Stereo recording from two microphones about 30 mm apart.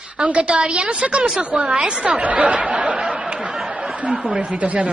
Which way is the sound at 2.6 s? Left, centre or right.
Right.